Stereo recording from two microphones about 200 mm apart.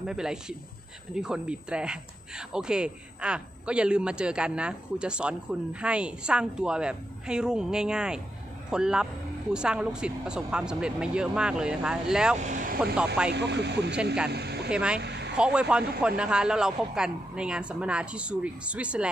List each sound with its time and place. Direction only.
0.0 s speech: 5° right (ahead or behind)
12.4 s speech: 40° right (ahead or behind)
12.9 s speech: 5° right (ahead or behind)
13.3 s speech: 60° right (ahead or behind)
14.3 s a sound: 55° right (ahead or behind)
14.7 s speech: 5° right (ahead or behind)
15.0 s a sound: 55° right (ahead or behind)
15.3 s speech: 5° right (ahead or behind)